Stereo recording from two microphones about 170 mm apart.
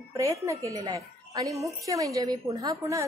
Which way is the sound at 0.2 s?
20° right (ahead or behind).